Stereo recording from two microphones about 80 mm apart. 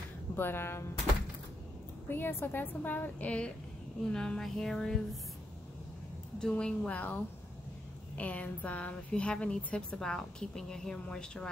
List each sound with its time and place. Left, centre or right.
0.4 s a woman's voice: left
2.0 s a woman's voice: left
4.1 s a sound: centre
6.4 s a woman's voice: centre
8.2 s a woman's voice: centre